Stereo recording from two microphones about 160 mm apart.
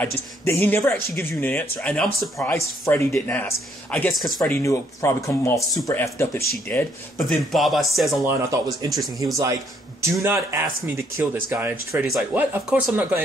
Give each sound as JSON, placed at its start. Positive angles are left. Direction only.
{"t": 0.0, "sound": "speech", "side_deg": 15}
{"t": 4.1, "sound": "speech", "side_deg": 0}
{"t": 4.5, "sound": "speech", "side_deg": 15}
{"t": 6.7, "sound": "speech", "side_deg": 5}
{"t": 8.3, "sound": "speech", "side_deg": -15}
{"t": 10.2, "sound": "speech", "side_deg": -15}
{"t": 11.9, "sound": "speech", "side_deg": 0}